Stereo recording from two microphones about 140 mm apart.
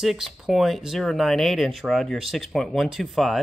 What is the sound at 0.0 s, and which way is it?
Speech, centre (ahead or behind).